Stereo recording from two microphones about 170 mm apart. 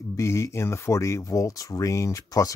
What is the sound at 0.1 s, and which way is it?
Speech, 15° left (ahead or behind).